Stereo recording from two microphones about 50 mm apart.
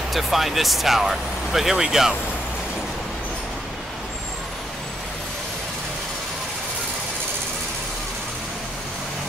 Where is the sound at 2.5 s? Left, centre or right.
Centre.